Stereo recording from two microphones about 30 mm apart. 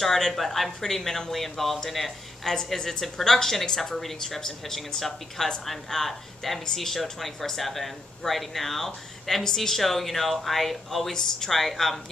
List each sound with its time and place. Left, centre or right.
0.3 s speech: centre
2.4 s a woman's voice: left